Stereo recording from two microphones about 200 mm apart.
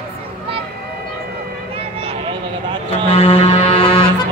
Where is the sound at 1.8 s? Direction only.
30° right (ahead or behind).